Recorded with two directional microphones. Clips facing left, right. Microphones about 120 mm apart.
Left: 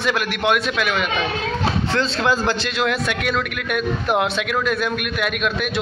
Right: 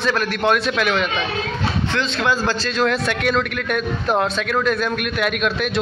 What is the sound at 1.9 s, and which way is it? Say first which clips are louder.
Speech: left 1 dB; 30° left (ahead or behind).